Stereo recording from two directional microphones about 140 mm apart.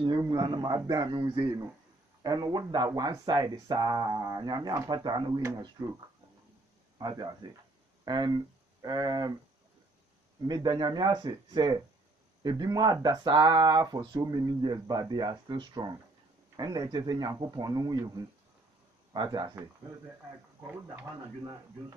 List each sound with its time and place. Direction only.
0.3 s a man's voice: 30° right (ahead or behind)
7.0 s speech: 30° right (ahead or behind)
10.4 s speech: 30° right (ahead or behind)
19.1 s speech: 30° right (ahead or behind)